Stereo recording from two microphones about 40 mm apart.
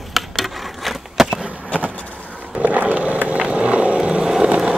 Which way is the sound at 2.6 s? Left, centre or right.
Right.